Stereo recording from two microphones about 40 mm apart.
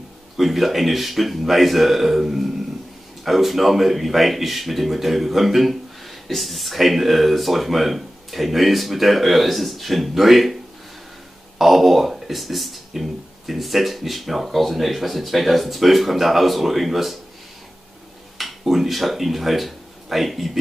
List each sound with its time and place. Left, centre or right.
0.4 s speech: centre
18.6 s speech: centre